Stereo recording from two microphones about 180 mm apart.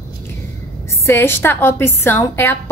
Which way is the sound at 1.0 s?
15° left (ahead or behind).